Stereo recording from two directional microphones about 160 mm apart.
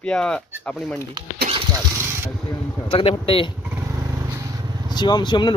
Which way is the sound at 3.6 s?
15° right (ahead or behind).